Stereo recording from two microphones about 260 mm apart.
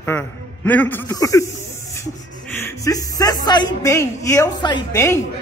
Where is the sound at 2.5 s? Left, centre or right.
Centre.